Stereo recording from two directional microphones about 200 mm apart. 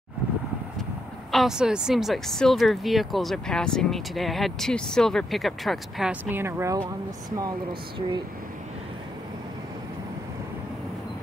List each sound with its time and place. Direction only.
1.3 s speech: centre (ahead or behind); by 7.5 s 20° right (ahead or behind)